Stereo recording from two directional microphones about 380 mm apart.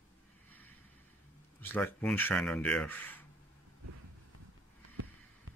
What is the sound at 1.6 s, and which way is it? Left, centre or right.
Speech, centre.